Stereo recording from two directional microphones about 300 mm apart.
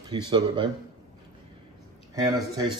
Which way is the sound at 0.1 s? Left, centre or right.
Centre.